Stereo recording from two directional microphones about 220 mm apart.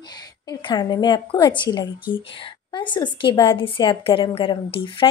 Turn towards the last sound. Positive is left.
turn(degrees=25)  # may be behind; listen again after turning